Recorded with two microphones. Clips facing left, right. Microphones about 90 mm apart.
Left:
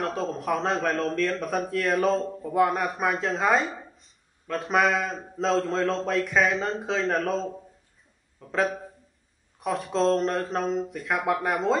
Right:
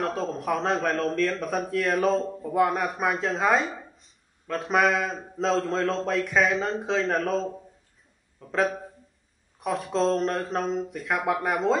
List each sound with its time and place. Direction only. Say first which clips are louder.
0.0 s speech: even; centre (ahead or behind)